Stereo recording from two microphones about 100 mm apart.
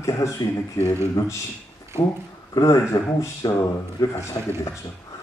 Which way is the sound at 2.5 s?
35° left (ahead or behind).